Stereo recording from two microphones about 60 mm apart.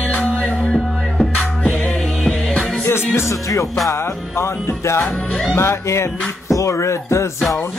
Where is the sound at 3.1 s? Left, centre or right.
Left.